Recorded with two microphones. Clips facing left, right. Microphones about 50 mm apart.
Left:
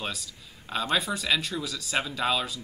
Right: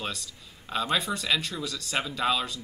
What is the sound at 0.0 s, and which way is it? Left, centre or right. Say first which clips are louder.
A man's voice: even; centre.